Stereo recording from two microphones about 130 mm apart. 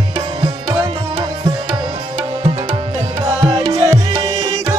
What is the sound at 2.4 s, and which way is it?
Music, 45° right (ahead or behind).